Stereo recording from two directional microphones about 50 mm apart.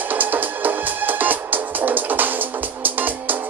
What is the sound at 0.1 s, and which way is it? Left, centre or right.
Music, right.